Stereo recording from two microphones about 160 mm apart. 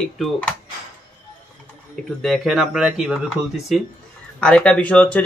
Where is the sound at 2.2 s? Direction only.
Centre (ahead or behind).